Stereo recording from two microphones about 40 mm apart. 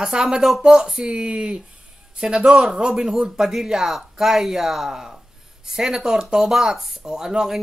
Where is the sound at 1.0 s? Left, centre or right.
Right.